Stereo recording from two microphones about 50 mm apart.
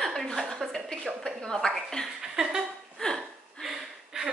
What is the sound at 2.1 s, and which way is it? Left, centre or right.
Speech, centre.